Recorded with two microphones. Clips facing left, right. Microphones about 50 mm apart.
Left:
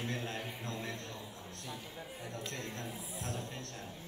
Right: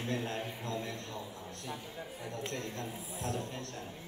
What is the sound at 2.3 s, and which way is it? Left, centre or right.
Speech, right.